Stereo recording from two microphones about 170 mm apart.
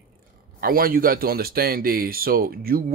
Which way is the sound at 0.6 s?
60° right (ahead or behind).